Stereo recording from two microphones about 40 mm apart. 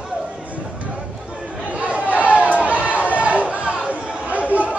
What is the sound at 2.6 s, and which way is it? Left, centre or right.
Run, right.